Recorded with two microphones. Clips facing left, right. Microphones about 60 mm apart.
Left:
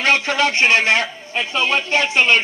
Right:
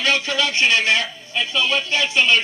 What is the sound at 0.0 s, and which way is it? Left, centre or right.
Speech, left.